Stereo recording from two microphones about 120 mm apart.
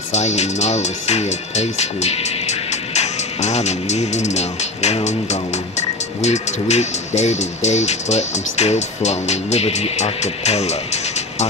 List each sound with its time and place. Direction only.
0.1 s speech: 70° left (ahead or behind)